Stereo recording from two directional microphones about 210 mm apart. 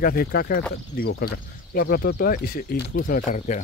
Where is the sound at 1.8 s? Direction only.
45° left (ahead or behind).